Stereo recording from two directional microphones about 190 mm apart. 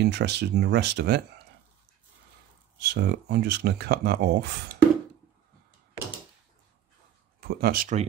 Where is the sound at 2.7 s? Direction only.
60° right (ahead or behind).